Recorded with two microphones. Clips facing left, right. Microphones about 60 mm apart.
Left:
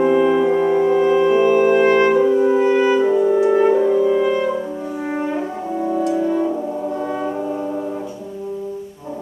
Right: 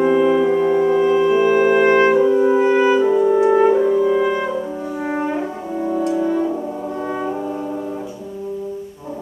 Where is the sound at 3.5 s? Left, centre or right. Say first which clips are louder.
Right 1 dB; centre.